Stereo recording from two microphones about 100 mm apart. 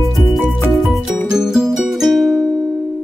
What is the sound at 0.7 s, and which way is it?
Music, centre (ahead or behind).